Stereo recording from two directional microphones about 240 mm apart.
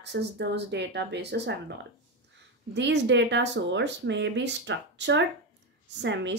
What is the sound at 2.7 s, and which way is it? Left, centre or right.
A woman's voice, right.